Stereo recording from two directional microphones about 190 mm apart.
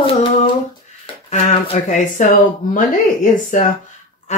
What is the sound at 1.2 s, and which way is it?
Speech, 35° left (ahead or behind).